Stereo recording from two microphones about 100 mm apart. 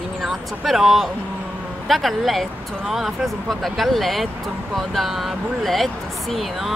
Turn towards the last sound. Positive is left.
turn(degrees=0)  # may be behind; listen again after turning